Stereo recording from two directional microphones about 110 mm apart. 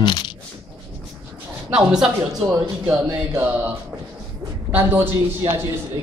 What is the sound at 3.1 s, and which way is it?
Speech, 15° right (ahead or behind).